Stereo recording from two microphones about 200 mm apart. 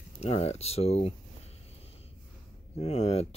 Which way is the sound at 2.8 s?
30° left (ahead or behind).